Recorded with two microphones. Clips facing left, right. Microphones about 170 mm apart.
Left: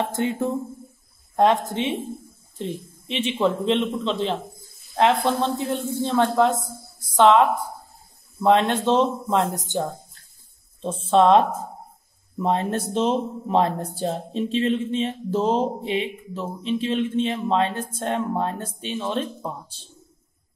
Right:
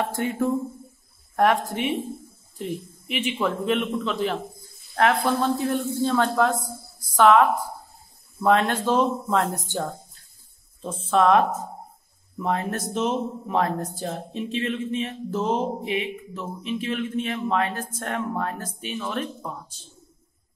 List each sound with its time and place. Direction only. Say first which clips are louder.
0.0 s speech: left 1 dB; 25° left (ahead or behind)
10.8 s speech: left 3 dB; 30° left (ahead or behind)